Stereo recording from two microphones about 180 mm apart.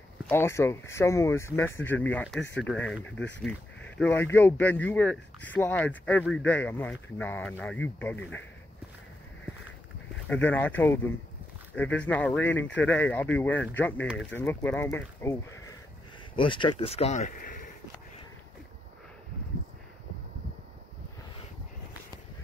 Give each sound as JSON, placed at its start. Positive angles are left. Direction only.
{"t": 0.3, "sound": "speech", "side_deg": 15}
{"t": 10.2, "sound": "speech", "side_deg": 10}
{"t": 16.3, "sound": "speech", "side_deg": 30}